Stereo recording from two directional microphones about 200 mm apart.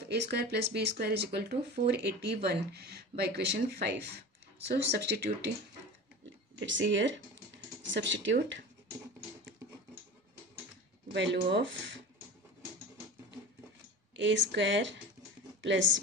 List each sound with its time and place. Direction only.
0.1 s speech: 55° right (ahead or behind)
6.6 s speech: 65° right (ahead or behind)
11.3 s speech: 60° right (ahead or behind)
14.1 s speech: 65° right (ahead or behind)